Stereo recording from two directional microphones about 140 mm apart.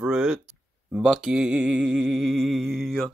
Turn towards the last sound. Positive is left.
turn(degrees=0)  # may be behind; listen again after turning